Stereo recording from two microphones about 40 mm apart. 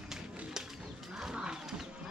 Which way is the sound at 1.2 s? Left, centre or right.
Centre.